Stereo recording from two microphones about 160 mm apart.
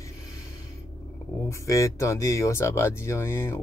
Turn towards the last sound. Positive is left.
turn(degrees=15)  # may be behind; listen again after turning